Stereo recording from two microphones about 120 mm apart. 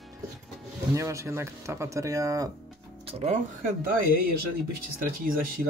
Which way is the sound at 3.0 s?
65° right (ahead or behind).